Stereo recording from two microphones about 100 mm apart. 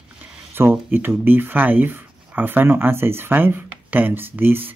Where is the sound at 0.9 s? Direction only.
20° right (ahead or behind).